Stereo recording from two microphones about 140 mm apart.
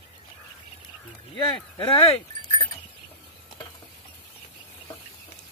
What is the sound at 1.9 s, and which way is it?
Speech, 40° left (ahead or behind).